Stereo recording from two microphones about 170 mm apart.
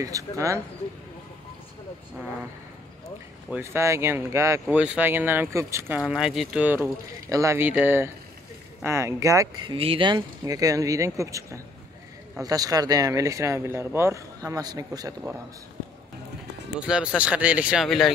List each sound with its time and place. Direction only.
0.0 s speech: 20° right (ahead or behind)
3.4 s speech: 10° right (ahead or behind)
5.9 s speech: 5° right (ahead or behind)
7.2 s speech: 20° right (ahead or behind)
16.8 s speech: 5° right (ahead or behind)